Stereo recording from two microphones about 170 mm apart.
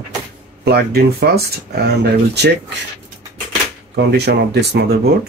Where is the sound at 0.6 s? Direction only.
65° right (ahead or behind).